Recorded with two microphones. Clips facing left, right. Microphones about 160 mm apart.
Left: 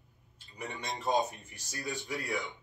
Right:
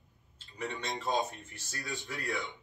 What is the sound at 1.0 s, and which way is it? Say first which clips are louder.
Speech: left 3 dB; 15° left (ahead or behind).